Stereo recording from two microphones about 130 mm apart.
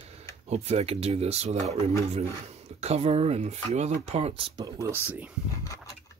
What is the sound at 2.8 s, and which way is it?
Speech, 55° right (ahead or behind).